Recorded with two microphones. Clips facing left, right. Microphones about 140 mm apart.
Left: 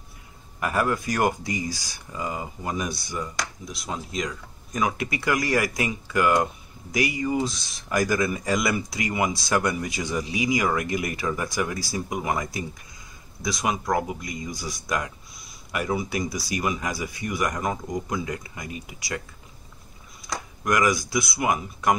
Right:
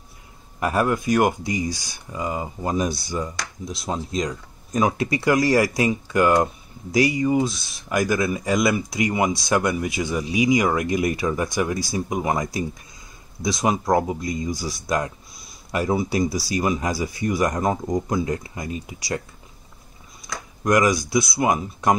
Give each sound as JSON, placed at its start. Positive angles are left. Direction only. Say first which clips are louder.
{"t": 0.6, "sound": "speech", "louder": "right 3 dB", "side_deg": -25}
{"t": 9.7, "sound": "speech", "louder": "right 4 dB", "side_deg": -10}
{"t": 20.6, "sound": "speech", "louder": "right 4 dB", "side_deg": -25}